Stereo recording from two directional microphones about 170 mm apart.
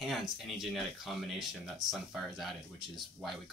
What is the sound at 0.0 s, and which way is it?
Speech, centre (ahead or behind).